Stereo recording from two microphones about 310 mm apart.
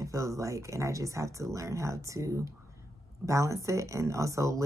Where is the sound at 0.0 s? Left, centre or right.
Centre.